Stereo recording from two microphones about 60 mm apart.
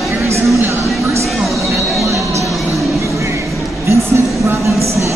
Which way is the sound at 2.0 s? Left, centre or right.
Right.